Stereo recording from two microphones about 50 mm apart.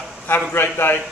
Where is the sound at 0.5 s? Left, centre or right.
Left.